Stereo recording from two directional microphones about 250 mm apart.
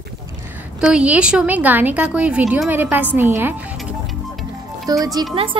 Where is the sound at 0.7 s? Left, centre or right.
Centre.